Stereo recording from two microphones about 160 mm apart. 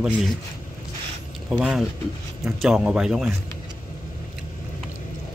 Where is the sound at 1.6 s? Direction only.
Centre (ahead or behind).